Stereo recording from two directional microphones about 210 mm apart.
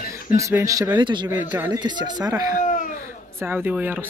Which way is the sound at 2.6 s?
35° left (ahead or behind).